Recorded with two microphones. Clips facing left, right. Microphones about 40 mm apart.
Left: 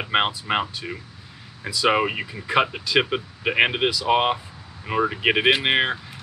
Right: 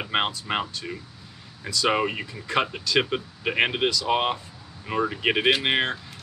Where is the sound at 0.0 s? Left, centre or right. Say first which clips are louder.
Left 4 dB; centre.